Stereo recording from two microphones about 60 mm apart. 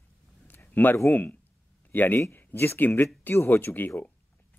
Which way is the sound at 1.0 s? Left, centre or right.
Left.